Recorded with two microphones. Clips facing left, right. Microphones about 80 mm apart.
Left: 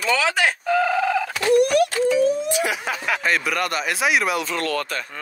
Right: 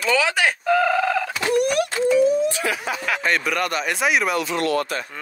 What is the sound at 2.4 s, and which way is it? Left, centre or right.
Speech, centre.